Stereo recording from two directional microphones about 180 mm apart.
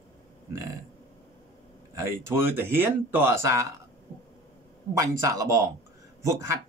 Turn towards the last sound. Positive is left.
turn(degrees=-15)  # may be behind; listen again after turning